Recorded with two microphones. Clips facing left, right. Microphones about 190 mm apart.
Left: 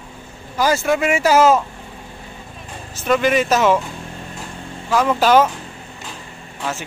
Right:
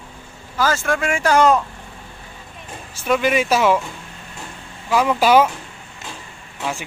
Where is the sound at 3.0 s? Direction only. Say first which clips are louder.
Left 2 dB; 5° right (ahead or behind).